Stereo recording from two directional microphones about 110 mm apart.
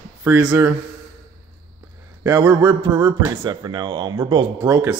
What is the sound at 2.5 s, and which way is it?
Speech, 20° right (ahead or behind).